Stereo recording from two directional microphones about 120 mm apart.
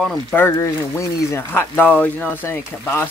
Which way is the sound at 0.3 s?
20° left (ahead or behind).